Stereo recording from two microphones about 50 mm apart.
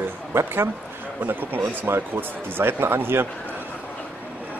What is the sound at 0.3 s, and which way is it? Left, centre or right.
Speech, right.